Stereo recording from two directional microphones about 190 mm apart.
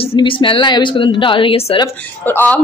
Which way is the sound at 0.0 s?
30° left (ahead or behind).